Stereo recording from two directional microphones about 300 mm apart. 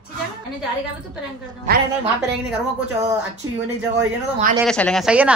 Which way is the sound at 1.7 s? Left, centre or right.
Right.